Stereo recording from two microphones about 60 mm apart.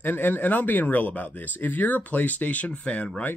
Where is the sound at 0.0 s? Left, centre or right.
Left.